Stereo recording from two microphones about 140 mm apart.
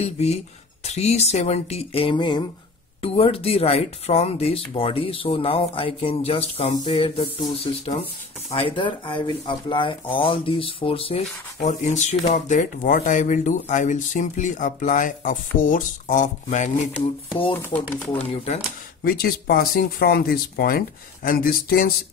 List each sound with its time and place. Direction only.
0.8 s speech: 50° left (ahead or behind)
11.6 s speech: 60° left (ahead or behind)
12.4 s speech: 65° left (ahead or behind)
18.3 s speech: 45° left (ahead or behind)
19.0 s speech: 90° left